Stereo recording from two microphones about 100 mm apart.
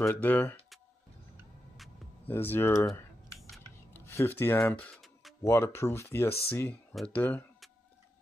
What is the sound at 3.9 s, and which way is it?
Speech, 25° left (ahead or behind).